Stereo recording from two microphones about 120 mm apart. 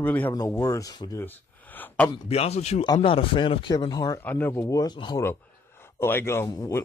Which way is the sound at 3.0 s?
50° left (ahead or behind).